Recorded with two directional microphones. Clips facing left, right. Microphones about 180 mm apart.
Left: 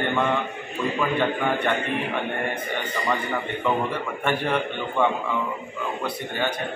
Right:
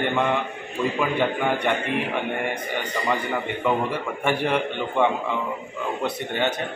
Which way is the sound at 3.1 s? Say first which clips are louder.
Right 1 dB; 10° right (ahead or behind).